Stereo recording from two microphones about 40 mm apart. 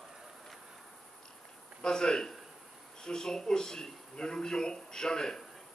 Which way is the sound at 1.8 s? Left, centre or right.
Centre.